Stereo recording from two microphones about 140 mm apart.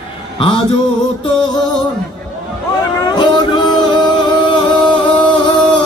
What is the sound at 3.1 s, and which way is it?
Music, 30° left (ahead or behind).